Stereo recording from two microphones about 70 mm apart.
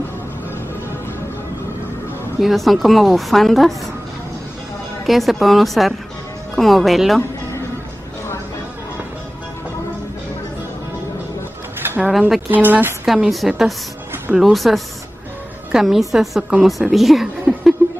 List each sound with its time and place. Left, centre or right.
2.4 s a woman's voice: centre
5.0 s a woman's voice: centre
12.0 s a woman's voice: centre
12.4 s speech: right
13.0 s a woman's voice: centre